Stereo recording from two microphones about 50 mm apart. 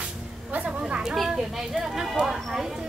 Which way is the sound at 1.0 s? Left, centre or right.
Centre.